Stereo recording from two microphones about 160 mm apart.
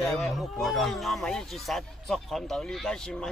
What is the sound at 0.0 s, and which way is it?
Speech, centre (ahead or behind).